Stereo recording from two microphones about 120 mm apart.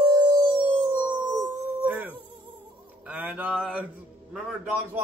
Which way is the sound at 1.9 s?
10° right (ahead or behind).